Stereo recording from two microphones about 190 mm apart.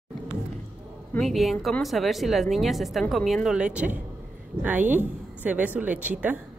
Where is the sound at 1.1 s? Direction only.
Centre (ahead or behind).